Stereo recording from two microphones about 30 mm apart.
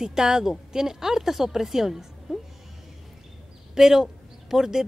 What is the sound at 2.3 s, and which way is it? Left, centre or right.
Music, centre.